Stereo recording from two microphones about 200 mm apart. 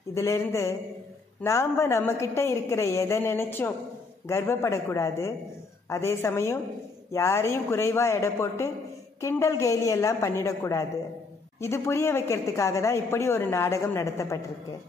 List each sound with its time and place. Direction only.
0.1 s a woman's voice: 15° left (ahead or behind)